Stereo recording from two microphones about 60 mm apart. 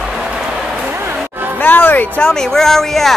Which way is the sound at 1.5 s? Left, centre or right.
Left.